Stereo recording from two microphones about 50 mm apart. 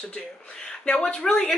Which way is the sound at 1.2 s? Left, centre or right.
Centre.